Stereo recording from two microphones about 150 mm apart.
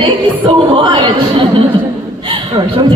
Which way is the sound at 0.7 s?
35° right (ahead or behind).